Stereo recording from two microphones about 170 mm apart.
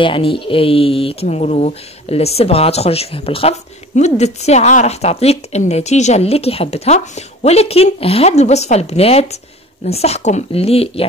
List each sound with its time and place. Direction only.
0.0 s speech: 30° left (ahead or behind)